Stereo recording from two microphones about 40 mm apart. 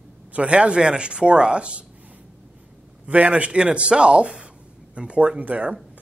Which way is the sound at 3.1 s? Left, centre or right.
Right.